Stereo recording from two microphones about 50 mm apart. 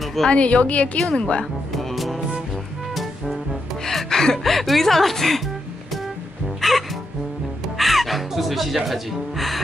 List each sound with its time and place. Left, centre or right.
0.0 s a sound: centre
0.3 s speech: left
0.9 s a woman's voice: centre
1.8 s music: centre
3.8 s speech: centre
6.6 s music: centre
7.7 s speech: centre